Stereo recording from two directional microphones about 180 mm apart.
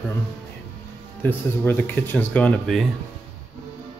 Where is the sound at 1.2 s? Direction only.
10° left (ahead or behind).